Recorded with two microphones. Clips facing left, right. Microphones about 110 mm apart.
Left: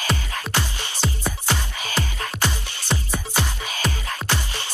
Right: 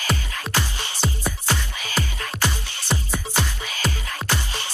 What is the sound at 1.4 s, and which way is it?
Music, 20° left (ahead or behind).